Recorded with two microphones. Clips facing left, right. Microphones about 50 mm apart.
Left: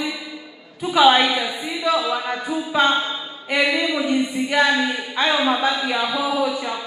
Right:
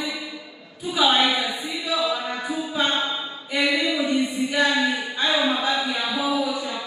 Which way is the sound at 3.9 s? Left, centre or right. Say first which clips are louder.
Left 2 dB; left.